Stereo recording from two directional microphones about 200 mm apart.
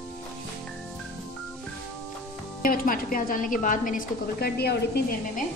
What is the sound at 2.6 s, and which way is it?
A woman's voice, 45° left (ahead or behind).